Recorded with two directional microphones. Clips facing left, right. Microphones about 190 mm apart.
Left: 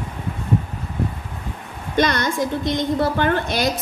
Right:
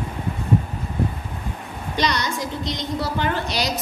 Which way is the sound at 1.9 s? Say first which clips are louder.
Left 5 dB; 50° left (ahead or behind).